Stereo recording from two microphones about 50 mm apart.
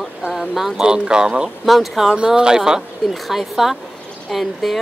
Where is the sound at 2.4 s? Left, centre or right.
Centre.